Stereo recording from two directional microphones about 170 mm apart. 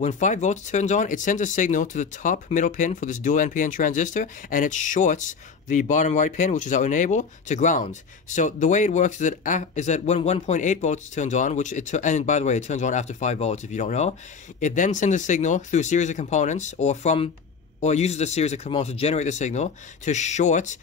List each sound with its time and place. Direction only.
0.0 s speech: 45° left (ahead or behind)